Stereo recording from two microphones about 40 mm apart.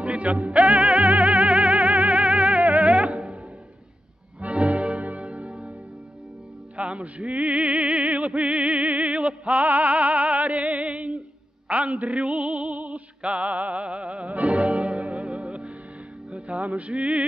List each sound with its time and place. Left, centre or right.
0.0 s music: right
4.4 s music: right
6.8 s music: right